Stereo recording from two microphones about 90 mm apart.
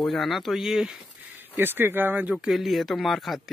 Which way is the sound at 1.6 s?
25° right (ahead or behind).